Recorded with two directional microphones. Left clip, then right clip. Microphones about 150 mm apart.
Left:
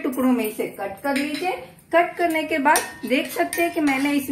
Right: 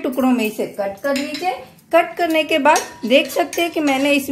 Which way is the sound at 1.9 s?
90° right.